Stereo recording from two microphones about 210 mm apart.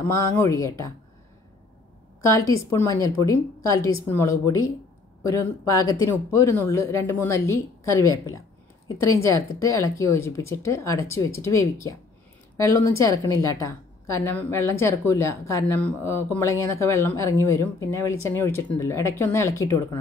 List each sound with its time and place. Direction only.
0.1 s a woman's voice: 15° left (ahead or behind)
2.2 s a woman's voice: 15° left (ahead or behind)